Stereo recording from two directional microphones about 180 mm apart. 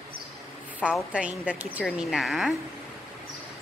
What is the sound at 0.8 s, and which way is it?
A woman's voice, 5° right (ahead or behind).